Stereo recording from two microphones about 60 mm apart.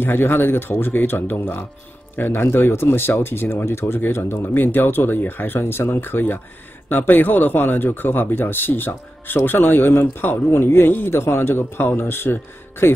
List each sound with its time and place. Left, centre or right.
0.0 s speech: left